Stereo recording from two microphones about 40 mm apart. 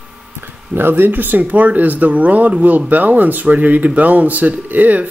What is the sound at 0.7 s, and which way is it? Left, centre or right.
Speech, right.